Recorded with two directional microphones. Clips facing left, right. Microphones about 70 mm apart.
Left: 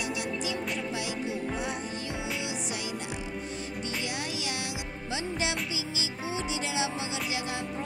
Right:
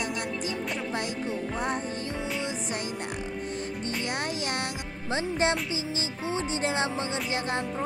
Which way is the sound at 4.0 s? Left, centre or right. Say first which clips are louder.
Right 3 dB; right.